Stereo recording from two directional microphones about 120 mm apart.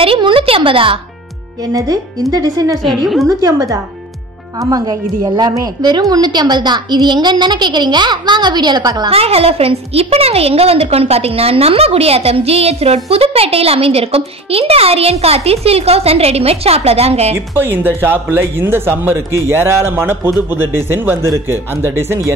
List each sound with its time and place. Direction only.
0.0 s a woman's voice: 50° right (ahead or behind)
1.7 s a woman's voice: 30° right (ahead or behind)
2.8 s a woman's voice: centre (ahead or behind)
3.3 s a woman's voice: 30° right (ahead or behind)
9.1 s a woman's voice: 55° right (ahead or behind)
17.6 s speech: 20° right (ahead or behind)